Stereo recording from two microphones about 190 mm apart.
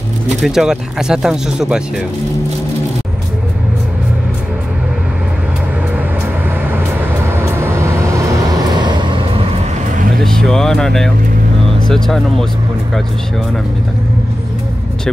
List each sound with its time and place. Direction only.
0.4 s speech: centre (ahead or behind)
7.2 s vehicle: 15° right (ahead or behind)
10.2 s vehicle: centre (ahead or behind)
11.9 s speech: centre (ahead or behind)